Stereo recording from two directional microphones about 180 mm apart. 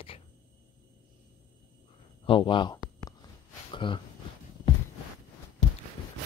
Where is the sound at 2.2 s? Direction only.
30° left (ahead or behind).